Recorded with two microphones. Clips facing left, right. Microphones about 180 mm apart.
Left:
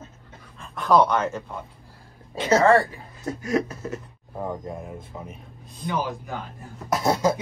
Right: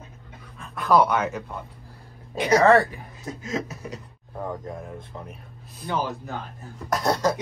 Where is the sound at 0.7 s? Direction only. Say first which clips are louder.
Left 1 dB; 5° right (ahead or behind); by 3.6 s 20° right (ahead or behind).